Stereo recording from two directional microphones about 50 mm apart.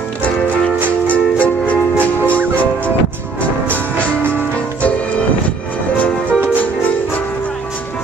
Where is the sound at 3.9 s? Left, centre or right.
Left.